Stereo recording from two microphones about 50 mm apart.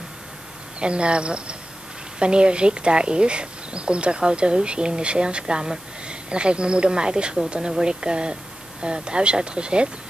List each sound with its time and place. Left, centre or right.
0.7 s speech: right